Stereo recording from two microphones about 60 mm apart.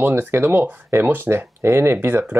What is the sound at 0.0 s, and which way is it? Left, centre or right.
Speech, right.